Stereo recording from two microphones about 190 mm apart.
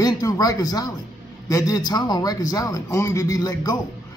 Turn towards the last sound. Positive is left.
turn(degrees=20)  # may be behind; listen again after turning